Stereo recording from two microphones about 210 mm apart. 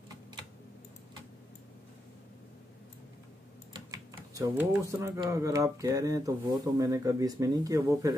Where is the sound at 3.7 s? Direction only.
15° right (ahead or behind).